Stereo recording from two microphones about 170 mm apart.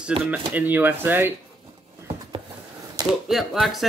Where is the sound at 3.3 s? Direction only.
Centre (ahead or behind).